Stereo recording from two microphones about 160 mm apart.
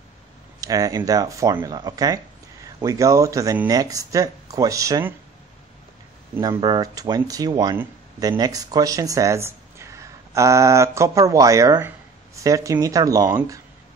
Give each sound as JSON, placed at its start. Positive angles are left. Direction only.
{"t": 0.6, "sound": "speech", "side_deg": -20}
{"t": 6.4, "sound": "speech", "side_deg": -25}